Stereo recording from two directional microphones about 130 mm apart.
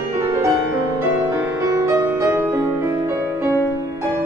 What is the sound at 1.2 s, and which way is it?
Music, 20° right (ahead or behind).